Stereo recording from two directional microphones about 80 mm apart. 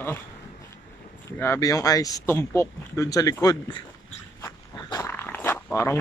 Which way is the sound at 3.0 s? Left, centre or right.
Left.